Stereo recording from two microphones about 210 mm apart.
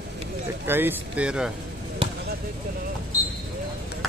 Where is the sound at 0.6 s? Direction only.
10° right (ahead or behind).